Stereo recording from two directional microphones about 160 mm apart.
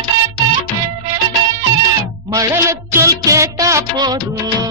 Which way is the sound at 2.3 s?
20° right (ahead or behind).